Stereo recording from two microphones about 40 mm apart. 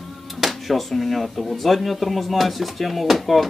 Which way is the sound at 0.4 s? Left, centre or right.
Centre.